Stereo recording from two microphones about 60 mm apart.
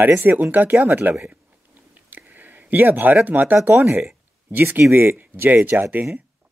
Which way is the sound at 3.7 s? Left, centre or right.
Right.